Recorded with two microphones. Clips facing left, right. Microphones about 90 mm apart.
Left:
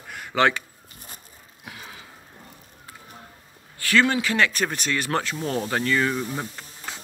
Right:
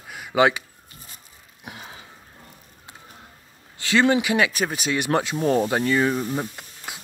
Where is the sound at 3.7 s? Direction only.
20° right (ahead or behind).